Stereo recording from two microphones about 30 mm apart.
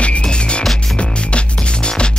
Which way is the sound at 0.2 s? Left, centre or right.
Left.